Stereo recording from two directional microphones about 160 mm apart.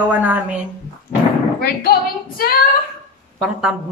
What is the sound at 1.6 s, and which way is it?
Speech, 75° left (ahead or behind).